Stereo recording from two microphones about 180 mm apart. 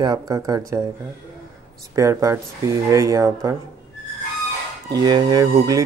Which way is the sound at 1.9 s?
20° right (ahead or behind).